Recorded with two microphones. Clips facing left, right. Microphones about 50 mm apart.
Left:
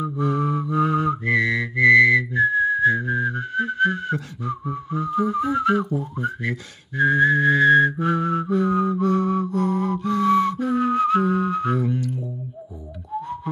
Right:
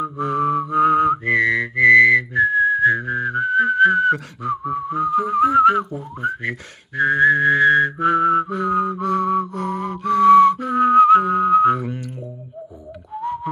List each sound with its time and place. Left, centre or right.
0.0 s whistling: right
9.0 s music: right